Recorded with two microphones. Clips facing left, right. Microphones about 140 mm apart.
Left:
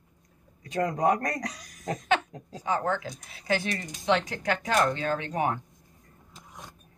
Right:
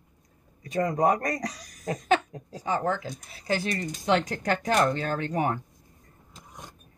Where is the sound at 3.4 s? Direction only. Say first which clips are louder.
Right 1 dB; 35° right (ahead or behind).